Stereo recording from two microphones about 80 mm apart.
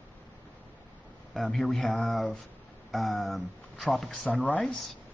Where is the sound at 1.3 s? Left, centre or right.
Centre.